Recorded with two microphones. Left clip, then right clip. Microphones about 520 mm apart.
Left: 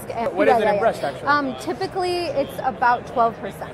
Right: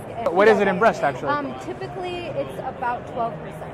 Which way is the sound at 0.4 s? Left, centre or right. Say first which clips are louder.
Right 1 dB; right.